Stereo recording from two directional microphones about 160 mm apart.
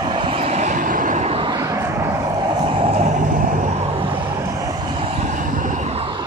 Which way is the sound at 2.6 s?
35° right (ahead or behind).